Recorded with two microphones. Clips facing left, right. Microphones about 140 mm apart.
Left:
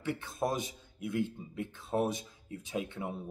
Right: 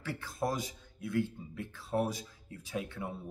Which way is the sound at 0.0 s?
20° left (ahead or behind).